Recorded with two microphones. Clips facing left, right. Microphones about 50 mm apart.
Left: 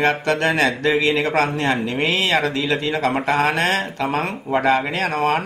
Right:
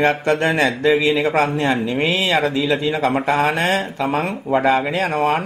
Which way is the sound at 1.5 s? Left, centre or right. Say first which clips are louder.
Right 2 dB; left.